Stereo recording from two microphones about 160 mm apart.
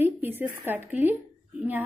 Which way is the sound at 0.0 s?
10° right (ahead or behind).